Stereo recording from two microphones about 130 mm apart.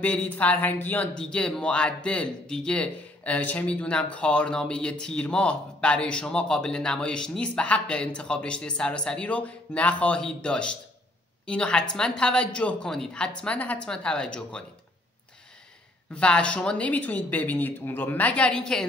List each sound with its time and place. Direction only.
0.0 s speech: 10° left (ahead or behind)
16.1 s speech: 10° left (ahead or behind)